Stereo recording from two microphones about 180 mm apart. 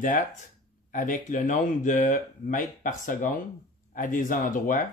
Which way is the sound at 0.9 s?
45° left (ahead or behind).